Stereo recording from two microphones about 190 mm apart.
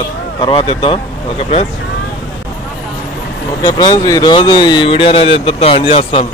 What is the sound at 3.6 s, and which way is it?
Speech, 20° left (ahead or behind).